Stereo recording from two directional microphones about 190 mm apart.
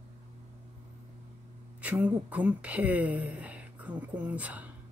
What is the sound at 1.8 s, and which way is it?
A woman's voice, 5° right (ahead or behind).